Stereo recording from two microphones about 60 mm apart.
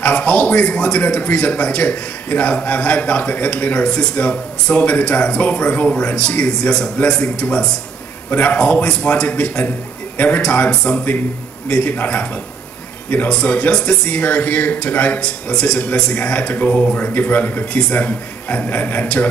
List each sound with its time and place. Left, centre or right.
0.0 s a man's voice: left
13.3 s a man's voice: centre